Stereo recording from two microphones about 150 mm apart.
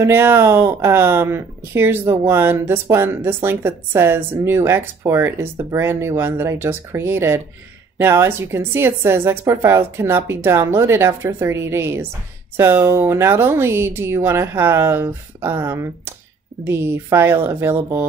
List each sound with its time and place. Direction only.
0.0 s speech: 15° right (ahead or behind)